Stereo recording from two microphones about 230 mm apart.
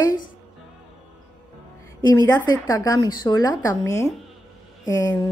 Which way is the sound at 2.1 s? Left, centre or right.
Centre.